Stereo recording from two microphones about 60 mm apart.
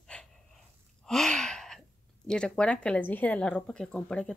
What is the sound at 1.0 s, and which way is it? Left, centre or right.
Gasp, centre.